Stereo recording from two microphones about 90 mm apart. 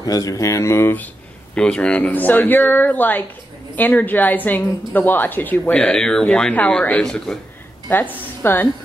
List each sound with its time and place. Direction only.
0.0 s speech: 45° left (ahead or behind); by 1.0 s 25° left (ahead or behind)
1.5 s speech: 10° left (ahead or behind)
7.3 s a man's voice: centre (ahead or behind)
7.9 s speech: 20° left (ahead or behind)